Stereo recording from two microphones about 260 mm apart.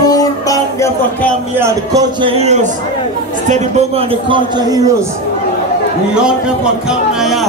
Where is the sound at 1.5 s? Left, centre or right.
Centre.